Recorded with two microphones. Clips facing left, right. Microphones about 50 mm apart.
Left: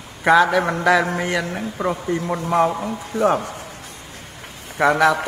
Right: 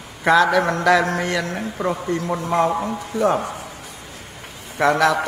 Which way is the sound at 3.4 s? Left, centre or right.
Right.